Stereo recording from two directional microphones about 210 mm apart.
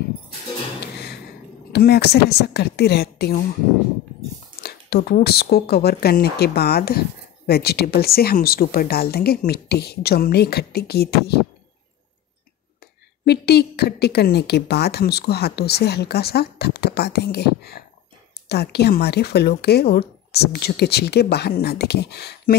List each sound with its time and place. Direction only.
0.9 s a sound: 50° left (ahead or behind)
1.7 s a woman's voice: 50° left (ahead or behind)
4.6 s a woman's voice: 50° left (ahead or behind)
13.2 s a woman's voice: 50° left (ahead or behind)